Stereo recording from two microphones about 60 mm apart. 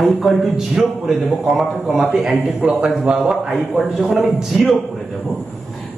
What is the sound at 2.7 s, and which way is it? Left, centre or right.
A man's voice, centre.